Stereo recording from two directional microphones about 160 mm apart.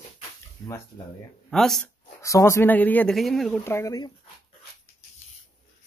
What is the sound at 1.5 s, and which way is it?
Speech, 5° left (ahead or behind).